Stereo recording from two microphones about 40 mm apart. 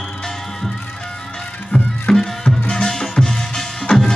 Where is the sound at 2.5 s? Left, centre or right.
Left.